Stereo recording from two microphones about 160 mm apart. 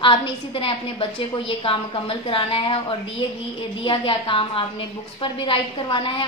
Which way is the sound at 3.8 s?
35° left (ahead or behind).